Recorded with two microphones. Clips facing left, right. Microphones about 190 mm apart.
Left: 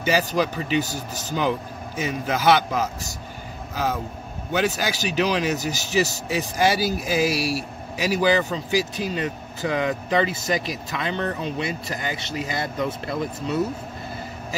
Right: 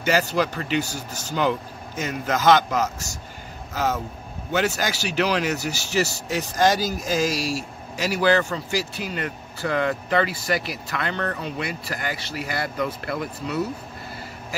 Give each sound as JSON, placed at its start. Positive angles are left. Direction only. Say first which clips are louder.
{"t": 0.0, "sound": "speech", "louder": "even", "side_deg": 15}